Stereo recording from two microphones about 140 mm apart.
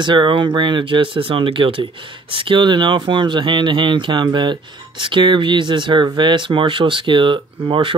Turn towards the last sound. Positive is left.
turn(degrees=-35)  # may be behind; listen again after turning